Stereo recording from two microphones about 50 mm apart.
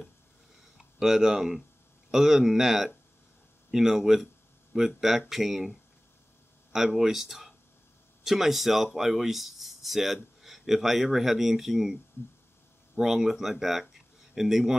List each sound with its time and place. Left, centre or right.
0.7 s speech: centre